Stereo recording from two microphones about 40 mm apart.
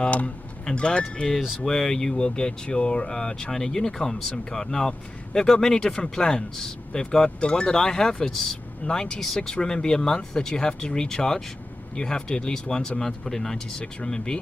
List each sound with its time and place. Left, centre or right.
0.7 s speech: left
1.6 s a man's voice: centre